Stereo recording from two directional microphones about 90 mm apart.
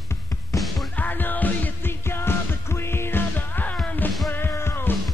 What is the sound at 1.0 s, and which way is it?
Music, 20° left (ahead or behind).